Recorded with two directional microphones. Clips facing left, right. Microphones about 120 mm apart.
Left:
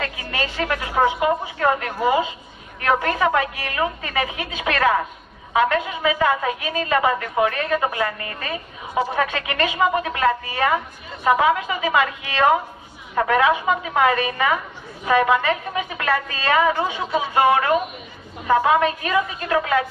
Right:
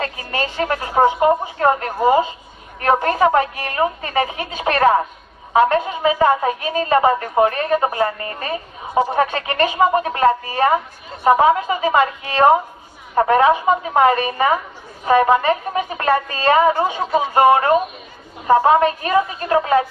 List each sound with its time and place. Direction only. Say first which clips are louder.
0.0 s a woman's voice: right 3 dB; 35° right (ahead or behind)